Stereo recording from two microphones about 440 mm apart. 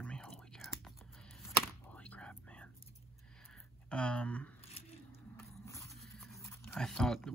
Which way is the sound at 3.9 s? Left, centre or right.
Centre.